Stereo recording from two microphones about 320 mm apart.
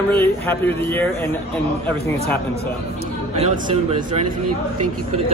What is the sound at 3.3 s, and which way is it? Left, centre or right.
Speech, centre.